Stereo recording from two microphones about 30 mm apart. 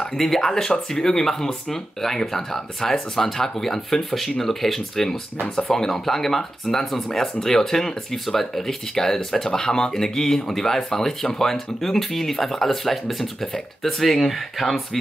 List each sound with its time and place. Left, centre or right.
0.1 s speech: centre